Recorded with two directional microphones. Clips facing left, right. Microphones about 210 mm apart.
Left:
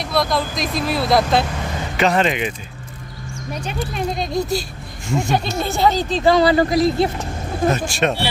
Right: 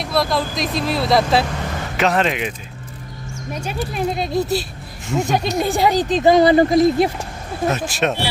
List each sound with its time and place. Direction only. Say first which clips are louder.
0.0 s speech: even; centre (ahead or behind)
3.6 s speech: right 2 dB; 5° right (ahead or behind)
5.2 s speech: right 4 dB; 15° right (ahead or behind)
7.6 s speech: left 1 dB; 5° right (ahead or behind)